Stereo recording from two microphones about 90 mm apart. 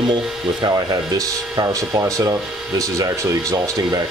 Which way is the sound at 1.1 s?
40° right (ahead or behind).